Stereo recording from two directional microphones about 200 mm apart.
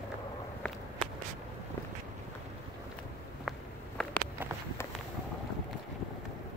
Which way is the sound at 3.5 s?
5° left (ahead or behind).